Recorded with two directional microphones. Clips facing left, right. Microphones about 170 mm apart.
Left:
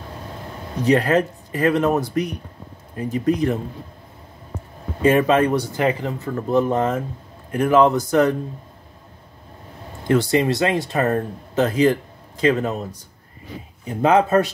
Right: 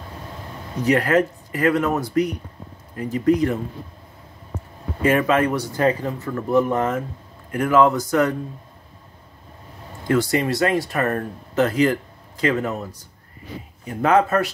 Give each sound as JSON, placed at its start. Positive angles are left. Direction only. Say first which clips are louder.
{"t": 0.8, "sound": "speech", "louder": "left 1 dB", "side_deg": 25}
{"t": 5.0, "sound": "speech", "louder": "left 2 dB", "side_deg": 25}
{"t": 10.0, "sound": "speech", "louder": "left 2 dB", "side_deg": 25}
{"t": 13.8, "sound": "speech", "louder": "left 1 dB", "side_deg": 20}